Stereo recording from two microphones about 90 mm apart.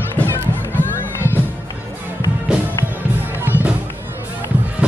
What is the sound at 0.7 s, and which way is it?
Run, 25° left (ahead or behind).